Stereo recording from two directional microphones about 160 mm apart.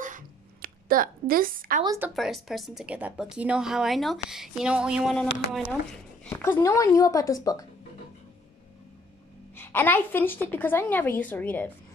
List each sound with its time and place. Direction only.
0.0 s a sound: 60° right (ahead or behind)
2.1 s speech: centre (ahead or behind)
6.2 s speech: 15° left (ahead or behind)
9.6 s a woman's voice: 15° left (ahead or behind)